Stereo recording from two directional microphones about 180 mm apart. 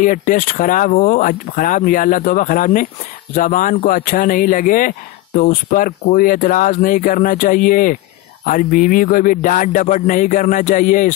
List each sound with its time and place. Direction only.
0.0 s speech: 45° left (ahead or behind)